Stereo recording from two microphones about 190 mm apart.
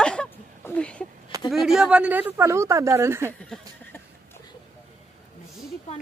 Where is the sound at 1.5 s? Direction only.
Centre (ahead or behind).